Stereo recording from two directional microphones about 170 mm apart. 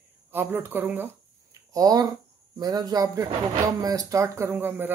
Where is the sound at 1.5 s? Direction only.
20° right (ahead or behind).